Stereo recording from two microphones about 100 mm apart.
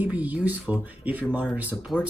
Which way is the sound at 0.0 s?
15° right (ahead or behind).